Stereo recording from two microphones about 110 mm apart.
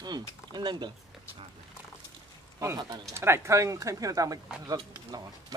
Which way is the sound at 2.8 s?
35° right (ahead or behind).